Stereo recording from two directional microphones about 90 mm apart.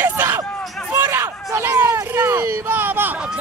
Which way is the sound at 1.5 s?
25° right (ahead or behind).